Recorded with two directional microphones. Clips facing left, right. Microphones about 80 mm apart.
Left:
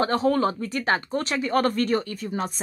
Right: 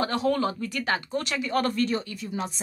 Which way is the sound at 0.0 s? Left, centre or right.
Left.